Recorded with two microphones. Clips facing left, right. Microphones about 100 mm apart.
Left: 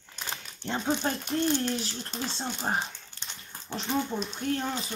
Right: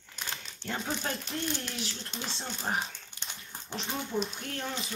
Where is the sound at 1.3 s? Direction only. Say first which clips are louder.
Left 8 dB; 35° left (ahead or behind).